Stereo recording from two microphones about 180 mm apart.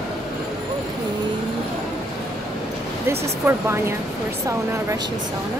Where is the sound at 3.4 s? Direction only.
15° right (ahead or behind).